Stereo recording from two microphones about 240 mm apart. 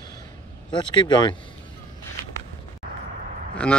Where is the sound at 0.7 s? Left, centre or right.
Centre.